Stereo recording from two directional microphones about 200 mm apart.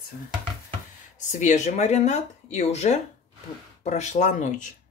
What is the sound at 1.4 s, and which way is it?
Speech, 35° left (ahead or behind).